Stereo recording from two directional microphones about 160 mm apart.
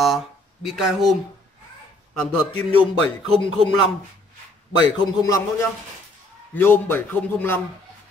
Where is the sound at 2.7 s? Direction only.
40° right (ahead or behind).